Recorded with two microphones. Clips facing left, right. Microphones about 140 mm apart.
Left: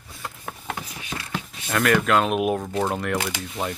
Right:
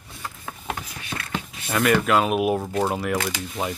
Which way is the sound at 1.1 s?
Centre (ahead or behind).